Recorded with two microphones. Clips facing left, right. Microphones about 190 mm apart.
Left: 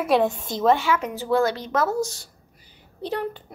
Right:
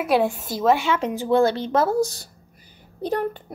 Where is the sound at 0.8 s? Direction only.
30° right (ahead or behind).